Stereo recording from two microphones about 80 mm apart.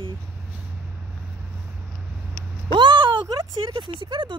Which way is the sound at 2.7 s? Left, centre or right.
Right.